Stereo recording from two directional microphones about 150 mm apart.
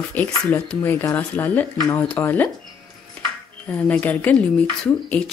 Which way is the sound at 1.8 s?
20° left (ahead or behind).